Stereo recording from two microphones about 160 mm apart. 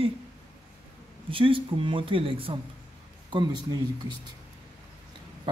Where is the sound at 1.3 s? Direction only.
35° right (ahead or behind).